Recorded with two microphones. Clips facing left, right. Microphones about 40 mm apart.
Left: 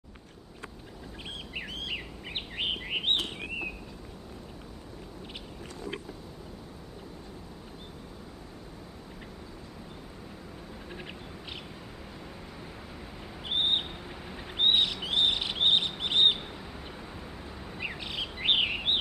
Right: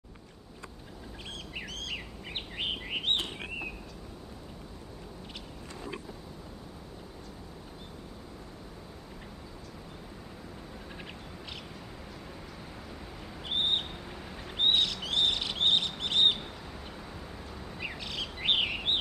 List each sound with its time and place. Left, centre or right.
1.8 s bird: centre
13.5 s a sound: centre
14.3 s bird: centre
17.7 s bird: centre